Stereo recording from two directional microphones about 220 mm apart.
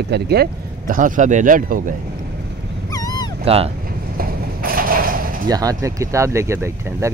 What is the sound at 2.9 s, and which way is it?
Dog, 15° left (ahead or behind).